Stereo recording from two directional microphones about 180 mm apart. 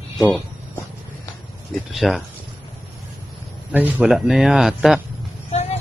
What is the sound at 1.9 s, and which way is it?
Speech, centre (ahead or behind).